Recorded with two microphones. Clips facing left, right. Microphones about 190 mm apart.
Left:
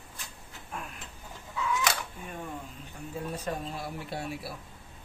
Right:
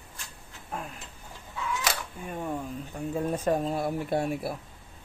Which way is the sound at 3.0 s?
55° right (ahead or behind).